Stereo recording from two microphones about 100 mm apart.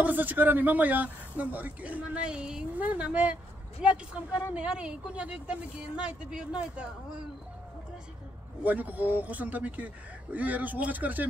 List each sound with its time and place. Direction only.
0.0 s speech: 15° right (ahead or behind)
8.6 s speech: 15° right (ahead or behind)